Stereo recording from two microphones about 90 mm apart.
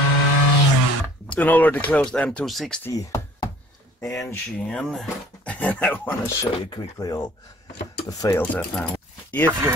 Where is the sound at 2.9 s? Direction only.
40° left (ahead or behind).